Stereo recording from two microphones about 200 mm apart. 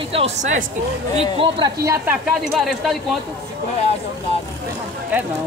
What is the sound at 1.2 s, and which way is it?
Speech, 25° right (ahead or behind).